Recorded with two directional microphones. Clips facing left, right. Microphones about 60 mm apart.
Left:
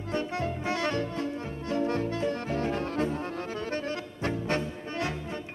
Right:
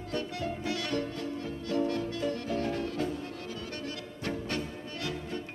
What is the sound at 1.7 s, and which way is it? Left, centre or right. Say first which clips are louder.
Brass instrument: left 2 dB; left.